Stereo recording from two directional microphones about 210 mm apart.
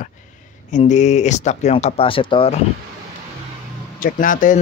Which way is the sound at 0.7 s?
35° left (ahead or behind).